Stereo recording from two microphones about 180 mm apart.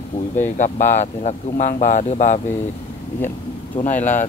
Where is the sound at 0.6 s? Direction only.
40° left (ahead or behind).